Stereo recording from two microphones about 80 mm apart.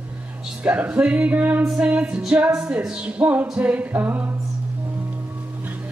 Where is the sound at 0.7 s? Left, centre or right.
Centre.